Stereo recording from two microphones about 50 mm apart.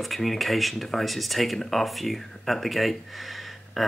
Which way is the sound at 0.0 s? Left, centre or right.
Centre.